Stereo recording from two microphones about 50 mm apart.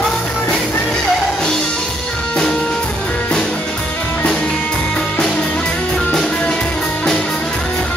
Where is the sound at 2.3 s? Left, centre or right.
Centre.